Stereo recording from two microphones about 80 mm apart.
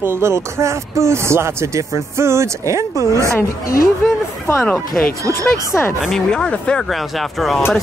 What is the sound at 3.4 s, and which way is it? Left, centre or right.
Speech, left.